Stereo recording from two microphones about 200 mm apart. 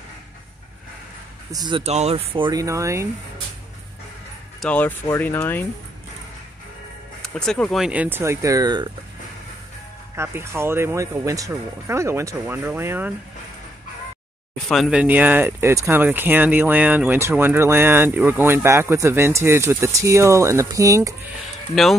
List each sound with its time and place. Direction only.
1.5 s speech: 20° right (ahead or behind)
4.6 s speech: 5° left (ahead or behind)
7.2 s speech: 5° left (ahead or behind); by 8.9 s 20° right (ahead or behind)
10.1 s speech: 10° right (ahead or behind)
14.7 s speech: centre (ahead or behind)
21.8 s speech: centre (ahead or behind)